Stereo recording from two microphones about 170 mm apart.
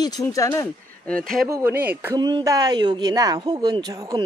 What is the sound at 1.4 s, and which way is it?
Speech, 15° right (ahead or behind).